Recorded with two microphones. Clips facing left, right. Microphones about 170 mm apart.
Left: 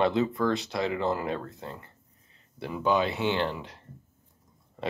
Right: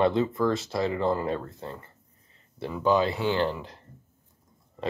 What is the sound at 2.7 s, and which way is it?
Speech, 20° left (ahead or behind).